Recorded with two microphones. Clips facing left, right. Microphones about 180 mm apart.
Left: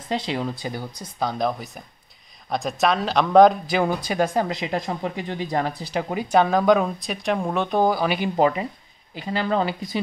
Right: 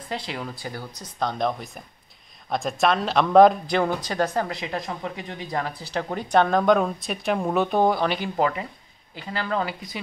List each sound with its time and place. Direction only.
0.1 s speech: 25° left (ahead or behind)
1.2 s speech: centre (ahead or behind); by 5.9 s 25° left (ahead or behind)
5.9 s speech: 10° left (ahead or behind)
8.4 s speech: 20° left (ahead or behind)